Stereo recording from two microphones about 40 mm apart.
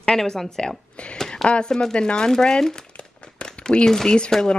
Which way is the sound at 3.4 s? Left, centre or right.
Left.